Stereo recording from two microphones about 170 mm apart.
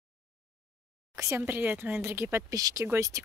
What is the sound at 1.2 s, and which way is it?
Speech, 15° right (ahead or behind).